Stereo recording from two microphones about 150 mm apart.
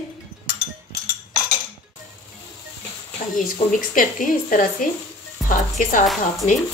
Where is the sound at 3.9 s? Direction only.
65° left (ahead or behind).